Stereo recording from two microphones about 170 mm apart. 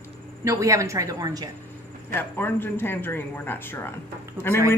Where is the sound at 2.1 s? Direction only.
10° left (ahead or behind).